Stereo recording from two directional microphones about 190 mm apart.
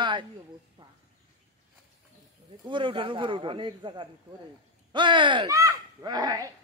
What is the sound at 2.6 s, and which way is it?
A man's voice, 25° right (ahead or behind).